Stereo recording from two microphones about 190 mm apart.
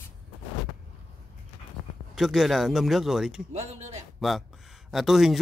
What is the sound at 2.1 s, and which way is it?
Speech, centre (ahead or behind).